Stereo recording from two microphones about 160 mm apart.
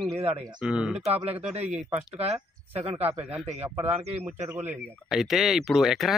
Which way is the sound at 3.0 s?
10° right (ahead or behind).